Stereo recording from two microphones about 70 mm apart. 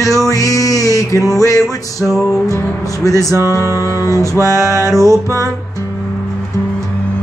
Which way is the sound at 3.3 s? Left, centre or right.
Right.